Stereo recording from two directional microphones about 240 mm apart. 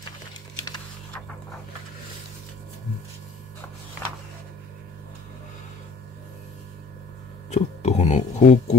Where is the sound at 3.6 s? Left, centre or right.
Centre.